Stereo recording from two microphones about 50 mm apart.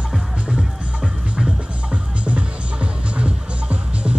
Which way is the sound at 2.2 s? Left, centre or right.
Right.